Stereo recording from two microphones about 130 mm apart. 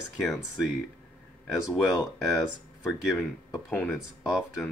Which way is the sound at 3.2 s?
15° left (ahead or behind).